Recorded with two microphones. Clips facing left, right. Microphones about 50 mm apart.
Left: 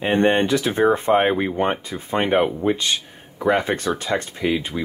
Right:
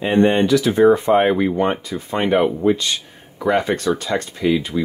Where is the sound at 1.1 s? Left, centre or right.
Centre.